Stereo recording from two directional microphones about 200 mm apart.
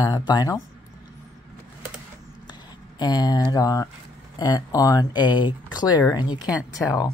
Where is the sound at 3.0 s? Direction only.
20° left (ahead or behind).